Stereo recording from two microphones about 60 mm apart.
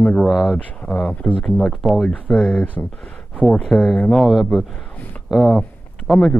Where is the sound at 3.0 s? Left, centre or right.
Centre.